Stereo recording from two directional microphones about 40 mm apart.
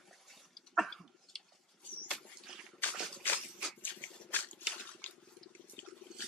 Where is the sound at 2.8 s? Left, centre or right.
Left.